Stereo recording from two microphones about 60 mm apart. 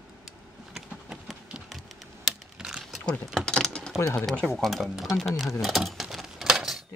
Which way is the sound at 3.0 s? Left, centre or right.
Centre.